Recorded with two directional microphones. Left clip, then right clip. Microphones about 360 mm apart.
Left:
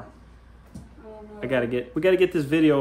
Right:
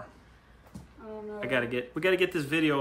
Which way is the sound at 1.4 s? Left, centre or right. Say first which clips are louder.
Left 5 dB; centre.